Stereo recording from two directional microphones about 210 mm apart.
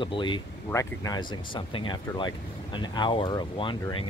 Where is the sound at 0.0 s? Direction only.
25° left (ahead or behind).